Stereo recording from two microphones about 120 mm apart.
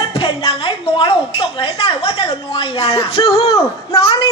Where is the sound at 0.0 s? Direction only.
45° left (ahead or behind).